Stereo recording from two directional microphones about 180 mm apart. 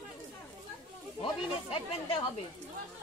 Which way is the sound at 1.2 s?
30° left (ahead or behind).